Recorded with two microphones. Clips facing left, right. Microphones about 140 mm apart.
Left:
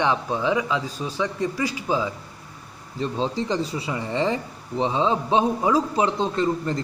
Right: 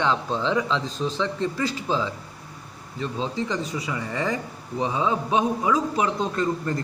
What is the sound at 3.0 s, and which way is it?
Speech, 35° left (ahead or behind).